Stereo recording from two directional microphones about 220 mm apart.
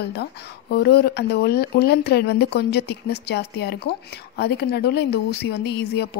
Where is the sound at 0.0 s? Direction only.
45° left (ahead or behind).